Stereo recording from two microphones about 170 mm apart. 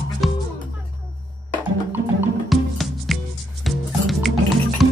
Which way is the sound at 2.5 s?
Centre (ahead or behind).